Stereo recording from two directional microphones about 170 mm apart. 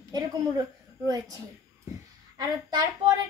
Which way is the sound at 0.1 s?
20° right (ahead or behind).